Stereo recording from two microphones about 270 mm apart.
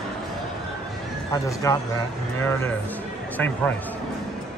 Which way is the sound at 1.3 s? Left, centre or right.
Centre.